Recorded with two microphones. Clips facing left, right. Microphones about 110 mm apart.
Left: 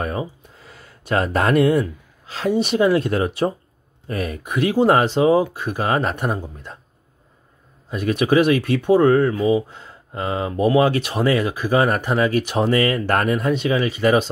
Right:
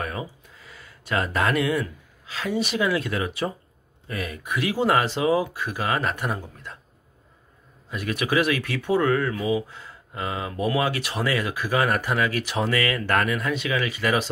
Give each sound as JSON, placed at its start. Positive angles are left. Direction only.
{"t": 0.0, "sound": "speech", "side_deg": 30}
{"t": 6.3, "sound": "speech", "side_deg": 25}
{"t": 7.9, "sound": "speech", "side_deg": 30}